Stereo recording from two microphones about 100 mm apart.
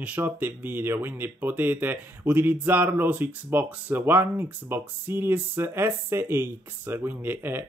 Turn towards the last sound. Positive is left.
turn(degrees=-25)  # may be behind; listen again after turning